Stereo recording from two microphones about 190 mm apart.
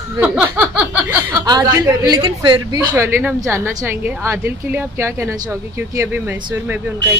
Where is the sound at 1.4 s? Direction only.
20° right (ahead or behind).